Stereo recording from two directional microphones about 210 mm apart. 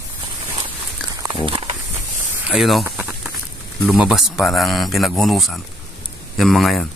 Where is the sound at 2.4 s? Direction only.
Centre (ahead or behind).